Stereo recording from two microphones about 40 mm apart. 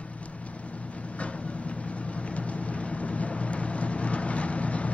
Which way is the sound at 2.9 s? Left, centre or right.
Left.